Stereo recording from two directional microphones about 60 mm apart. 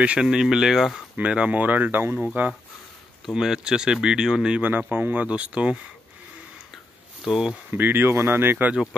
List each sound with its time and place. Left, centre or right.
0.2 s speech: centre
1.1 s speech: centre
3.3 s speech: centre
4.6 s speech: right
7.2 s speech: centre
7.7 s speech: right